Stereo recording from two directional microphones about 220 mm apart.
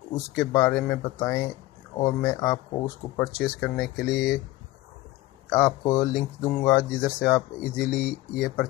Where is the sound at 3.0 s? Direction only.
30° left (ahead or behind).